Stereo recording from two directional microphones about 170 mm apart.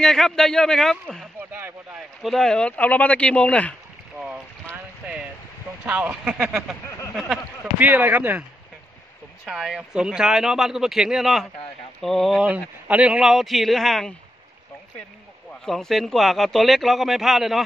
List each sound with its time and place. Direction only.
0.0 s a man's voice: centre (ahead or behind)
1.5 s a sound: 10° right (ahead or behind)
2.2 s speech: centre (ahead or behind)
5.9 s a man's voice: 10° right (ahead or behind)
7.8 s speech: 10° right (ahead or behind)
9.5 s a man's voice: 5° right (ahead or behind)
15.6 s a man's voice: centre (ahead or behind)